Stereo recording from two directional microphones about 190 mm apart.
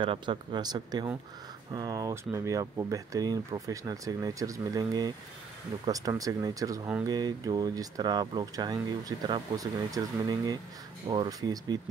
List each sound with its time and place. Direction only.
0.0 s speech: 25° right (ahead or behind)